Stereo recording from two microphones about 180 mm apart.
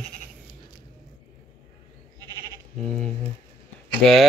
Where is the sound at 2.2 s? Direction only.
20° right (ahead or behind).